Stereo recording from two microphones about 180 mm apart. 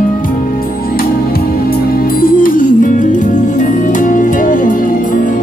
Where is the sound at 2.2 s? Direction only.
50° left (ahead or behind).